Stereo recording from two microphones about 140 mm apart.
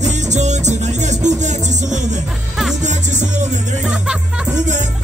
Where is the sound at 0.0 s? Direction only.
55° right (ahead or behind).